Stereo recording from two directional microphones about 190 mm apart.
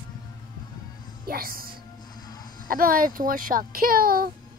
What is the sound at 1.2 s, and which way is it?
Speech, 50° right (ahead or behind).